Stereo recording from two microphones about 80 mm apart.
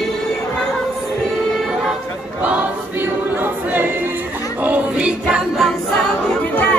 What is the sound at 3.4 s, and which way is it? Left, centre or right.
A capella, right.